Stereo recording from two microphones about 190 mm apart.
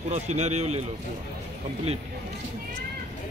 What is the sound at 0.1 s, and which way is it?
Speech, 35° right (ahead or behind).